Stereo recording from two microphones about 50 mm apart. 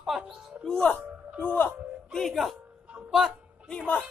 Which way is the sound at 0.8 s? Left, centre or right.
Left.